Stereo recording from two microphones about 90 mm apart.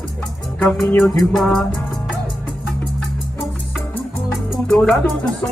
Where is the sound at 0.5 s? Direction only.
5° left (ahead or behind).